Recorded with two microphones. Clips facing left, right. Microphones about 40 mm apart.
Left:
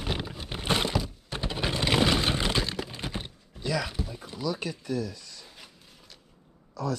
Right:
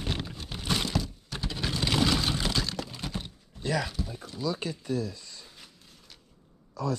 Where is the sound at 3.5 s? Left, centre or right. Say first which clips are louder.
Even; centre.